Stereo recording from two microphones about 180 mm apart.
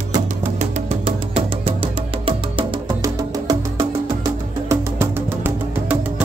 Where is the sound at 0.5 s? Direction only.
35° right (ahead or behind).